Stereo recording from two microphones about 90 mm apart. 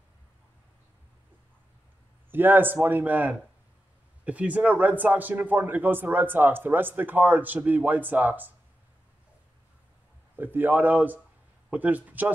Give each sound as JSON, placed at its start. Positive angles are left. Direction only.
{"t": 2.3, "sound": "a man's voice", "side_deg": -20}
{"t": 10.3, "sound": "a man's voice", "side_deg": -20}